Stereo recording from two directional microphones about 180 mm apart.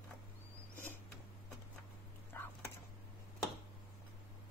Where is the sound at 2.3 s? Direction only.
10° left (ahead or behind).